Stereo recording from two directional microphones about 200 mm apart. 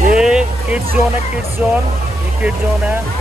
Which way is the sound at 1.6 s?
10° right (ahead or behind).